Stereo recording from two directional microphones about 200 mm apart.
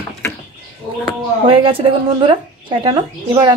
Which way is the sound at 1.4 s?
25° right (ahead or behind).